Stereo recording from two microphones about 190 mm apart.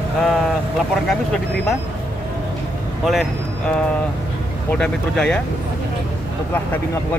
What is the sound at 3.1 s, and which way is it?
Speech, centre (ahead or behind).